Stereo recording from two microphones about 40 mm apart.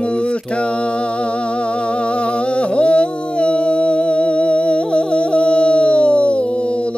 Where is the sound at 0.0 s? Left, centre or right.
Left.